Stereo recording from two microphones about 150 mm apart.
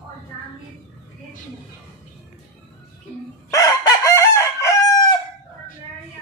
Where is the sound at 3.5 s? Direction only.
25° left (ahead or behind).